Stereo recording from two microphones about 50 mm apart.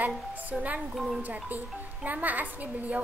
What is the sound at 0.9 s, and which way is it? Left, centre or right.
Speech, centre.